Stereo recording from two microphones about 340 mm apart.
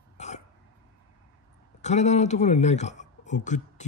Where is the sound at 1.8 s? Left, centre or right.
Centre.